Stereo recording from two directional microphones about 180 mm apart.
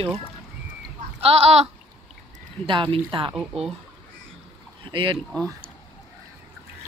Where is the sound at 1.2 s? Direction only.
35° right (ahead or behind).